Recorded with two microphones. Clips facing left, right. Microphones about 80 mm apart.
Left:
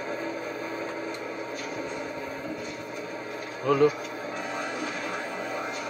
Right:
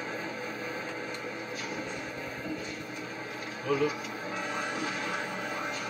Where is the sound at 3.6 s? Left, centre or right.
Left.